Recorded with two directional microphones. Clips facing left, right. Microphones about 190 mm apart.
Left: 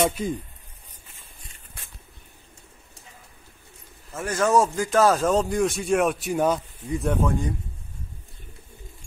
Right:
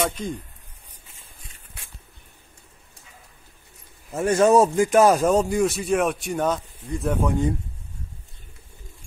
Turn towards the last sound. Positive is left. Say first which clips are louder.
# right 1 dB
turn(degrees=-15)  # may be behind; listen again after turning